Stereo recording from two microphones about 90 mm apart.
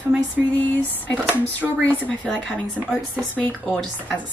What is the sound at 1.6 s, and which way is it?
Speech, 5° right (ahead or behind).